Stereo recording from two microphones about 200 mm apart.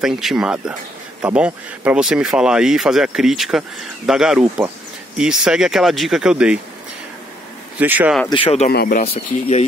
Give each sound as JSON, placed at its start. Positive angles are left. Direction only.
{"t": 0.0, "sound": "speech", "side_deg": 0}
{"t": 7.8, "sound": "speech", "side_deg": -10}
{"t": 8.3, "sound": "speech", "side_deg": 25}
{"t": 8.6, "sound": "speech", "side_deg": 45}
{"t": 9.1, "sound": "speech", "side_deg": 35}